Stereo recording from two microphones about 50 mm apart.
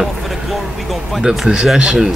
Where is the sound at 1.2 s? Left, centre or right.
Centre.